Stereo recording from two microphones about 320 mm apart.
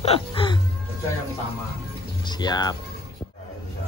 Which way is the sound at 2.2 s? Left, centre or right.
Centre.